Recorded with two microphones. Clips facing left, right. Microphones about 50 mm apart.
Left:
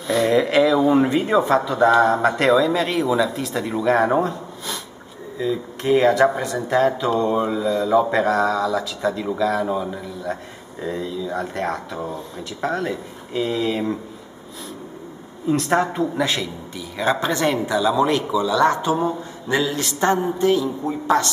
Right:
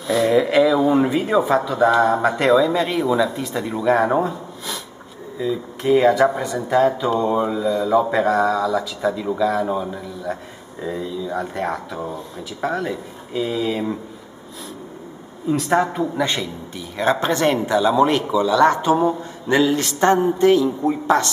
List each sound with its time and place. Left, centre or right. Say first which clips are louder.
0.0 s speech: right 1 dB; centre
15.4 s a man's voice: right 1 dB; centre
17.6 s a man's voice: right 3 dB; centre
18.5 s a man's voice: right 3 dB; right